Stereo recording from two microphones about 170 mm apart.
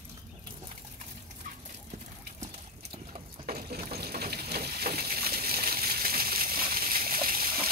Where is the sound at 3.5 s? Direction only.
65° right (ahead or behind).